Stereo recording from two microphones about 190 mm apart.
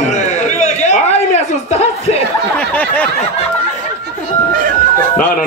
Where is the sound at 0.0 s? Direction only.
40° left (ahead or behind).